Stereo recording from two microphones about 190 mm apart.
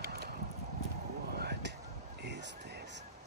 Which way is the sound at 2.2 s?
65° right (ahead or behind).